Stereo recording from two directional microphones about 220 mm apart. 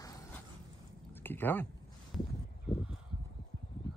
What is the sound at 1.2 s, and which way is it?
Speech, 10° left (ahead or behind).